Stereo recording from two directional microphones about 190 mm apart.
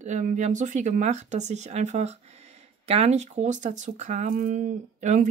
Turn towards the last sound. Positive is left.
turn(degrees=-40)  # may be behind; listen again after turning